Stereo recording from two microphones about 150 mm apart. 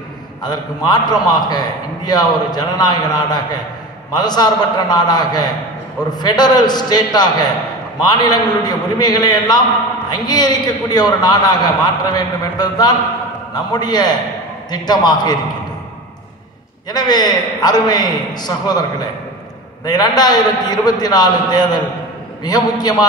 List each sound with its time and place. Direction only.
0.4 s a man's voice: 25° left (ahead or behind)
16.9 s a man's voice: 30° left (ahead or behind)